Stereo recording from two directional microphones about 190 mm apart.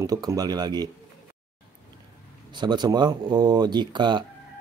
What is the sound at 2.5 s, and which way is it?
Speech, 25° right (ahead or behind).